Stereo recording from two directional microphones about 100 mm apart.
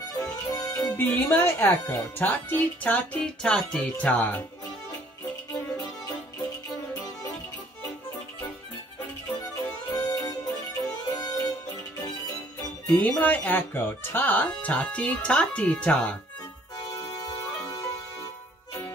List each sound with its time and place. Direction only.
0.1 s music: 40° left (ahead or behind)
0.9 s speech: 20° left (ahead or behind)
5.5 s music: 40° left (ahead or behind)
9.4 s music: 40° left (ahead or behind)
12.9 s speech: 15° left (ahead or behind)
16.7 s music: 40° left (ahead or behind)